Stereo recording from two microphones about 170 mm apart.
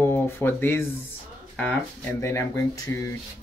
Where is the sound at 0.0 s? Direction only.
15° left (ahead or behind).